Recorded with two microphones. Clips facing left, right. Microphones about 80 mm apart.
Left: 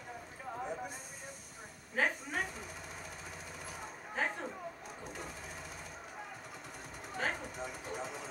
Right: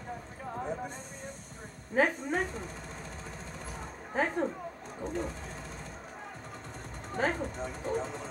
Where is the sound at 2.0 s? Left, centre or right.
Right.